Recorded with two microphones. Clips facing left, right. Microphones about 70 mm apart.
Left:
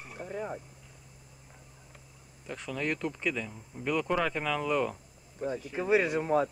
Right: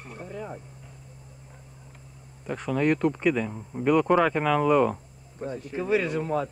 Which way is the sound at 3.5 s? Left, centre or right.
Right.